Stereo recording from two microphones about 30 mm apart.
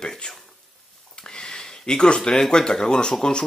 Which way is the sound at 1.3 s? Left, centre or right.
Left.